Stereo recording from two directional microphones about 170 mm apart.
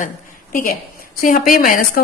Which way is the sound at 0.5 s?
55° left (ahead or behind).